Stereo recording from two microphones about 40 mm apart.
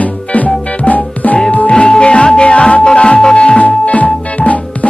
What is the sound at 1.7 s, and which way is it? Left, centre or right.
Music, left.